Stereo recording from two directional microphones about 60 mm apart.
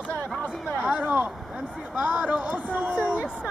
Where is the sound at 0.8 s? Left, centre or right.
Right.